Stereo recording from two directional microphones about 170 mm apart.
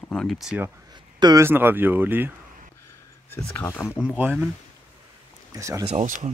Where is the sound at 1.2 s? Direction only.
15° right (ahead or behind).